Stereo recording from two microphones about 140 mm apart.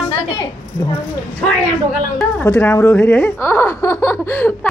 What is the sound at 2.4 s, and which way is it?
Speech, 15° left (ahead or behind).